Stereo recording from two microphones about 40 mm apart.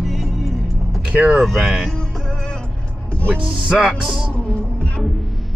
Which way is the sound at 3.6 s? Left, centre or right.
Right.